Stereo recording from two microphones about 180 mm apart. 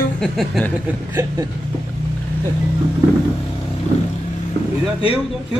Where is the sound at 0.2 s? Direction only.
5° left (ahead or behind).